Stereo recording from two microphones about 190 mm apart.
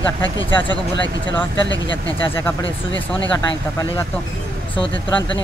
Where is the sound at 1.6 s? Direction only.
75° left (ahead or behind).